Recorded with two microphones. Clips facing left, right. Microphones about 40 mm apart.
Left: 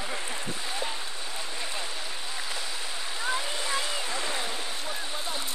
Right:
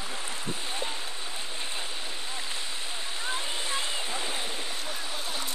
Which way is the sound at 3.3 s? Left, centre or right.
Centre.